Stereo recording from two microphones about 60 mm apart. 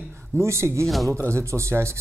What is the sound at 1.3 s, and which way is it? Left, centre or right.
Speech, right.